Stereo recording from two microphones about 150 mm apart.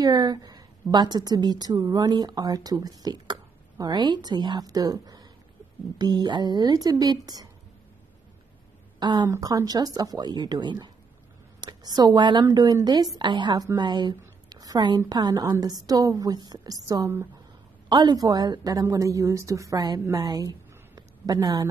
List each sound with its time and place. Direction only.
0.0 s a woman's voice: 25° right (ahead or behind)
9.0 s a woman's voice: 25° right (ahead or behind)
17.8 s a woman's voice: 30° right (ahead or behind)